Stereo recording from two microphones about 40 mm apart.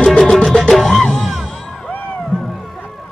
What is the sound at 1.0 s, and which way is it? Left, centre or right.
Music, centre.